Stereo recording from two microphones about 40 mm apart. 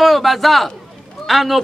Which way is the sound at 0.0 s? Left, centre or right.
Centre.